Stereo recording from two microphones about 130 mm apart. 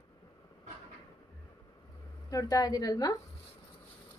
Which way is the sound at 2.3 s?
25° left (ahead or behind).